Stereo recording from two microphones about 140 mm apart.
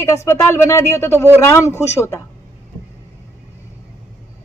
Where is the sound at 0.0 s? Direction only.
20° left (ahead or behind).